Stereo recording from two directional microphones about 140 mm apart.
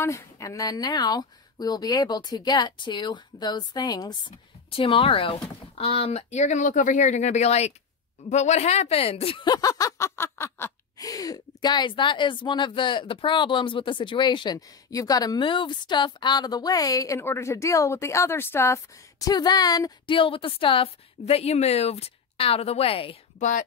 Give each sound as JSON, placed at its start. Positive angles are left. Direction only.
{"t": 0.0, "sound": "speech", "side_deg": 20}
{"t": 4.6, "sound": "speech", "side_deg": 40}